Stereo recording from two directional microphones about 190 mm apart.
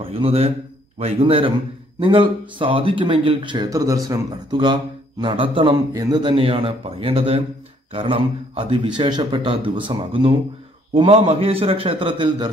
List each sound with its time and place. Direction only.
0.1 s a man's voice: 30° right (ahead or behind)